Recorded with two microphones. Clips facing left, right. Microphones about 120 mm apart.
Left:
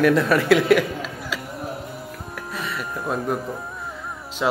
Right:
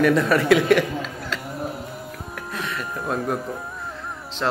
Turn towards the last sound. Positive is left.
turn(degrees=5)  # may be behind; listen again after turning